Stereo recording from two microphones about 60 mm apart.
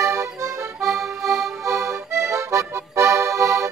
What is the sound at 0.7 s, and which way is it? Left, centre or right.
Accordion, centre.